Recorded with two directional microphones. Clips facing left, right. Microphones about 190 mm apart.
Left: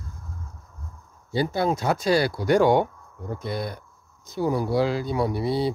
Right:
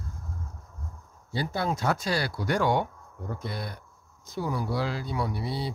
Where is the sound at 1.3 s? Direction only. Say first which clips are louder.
Left 6 dB; 15° left (ahead or behind).